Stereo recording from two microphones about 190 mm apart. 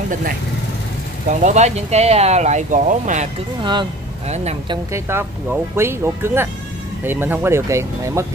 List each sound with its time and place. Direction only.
1.3 s speech: 40° right (ahead or behind)
4.3 s speech: 35° right (ahead or behind)
4.9 s speech: 15° right (ahead or behind)